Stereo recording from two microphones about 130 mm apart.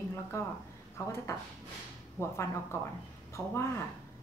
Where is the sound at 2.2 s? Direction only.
15° left (ahead or behind).